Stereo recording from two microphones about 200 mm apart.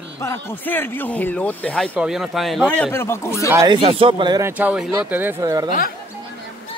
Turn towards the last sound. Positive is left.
turn(degrees=-15)  # may be behind; listen again after turning